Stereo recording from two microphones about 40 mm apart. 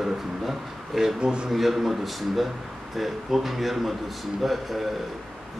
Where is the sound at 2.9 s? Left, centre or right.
Centre.